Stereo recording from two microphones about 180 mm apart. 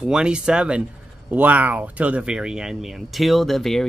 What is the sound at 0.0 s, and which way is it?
Speech, 5° right (ahead or behind).